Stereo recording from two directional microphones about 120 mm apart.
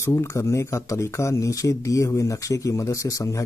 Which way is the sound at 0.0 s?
25° left (ahead or behind).